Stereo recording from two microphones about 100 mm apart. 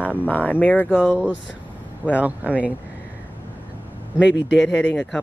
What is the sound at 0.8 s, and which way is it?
Speech, 10° right (ahead or behind).